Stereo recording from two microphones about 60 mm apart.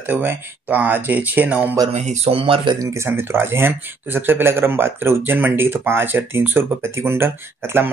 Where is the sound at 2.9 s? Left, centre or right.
Right.